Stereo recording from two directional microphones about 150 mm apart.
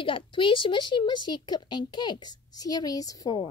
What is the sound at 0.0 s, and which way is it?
Speech, 35° left (ahead or behind).